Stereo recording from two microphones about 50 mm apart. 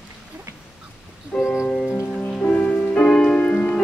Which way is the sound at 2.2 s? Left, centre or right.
Left.